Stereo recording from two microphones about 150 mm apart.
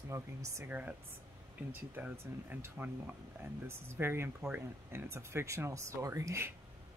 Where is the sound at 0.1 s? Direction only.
20° right (ahead or behind).